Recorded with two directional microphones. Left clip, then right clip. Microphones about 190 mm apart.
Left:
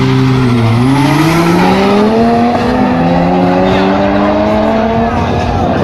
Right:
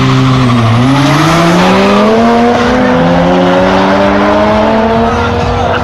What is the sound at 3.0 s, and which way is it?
Vehicle, 20° right (ahead or behind).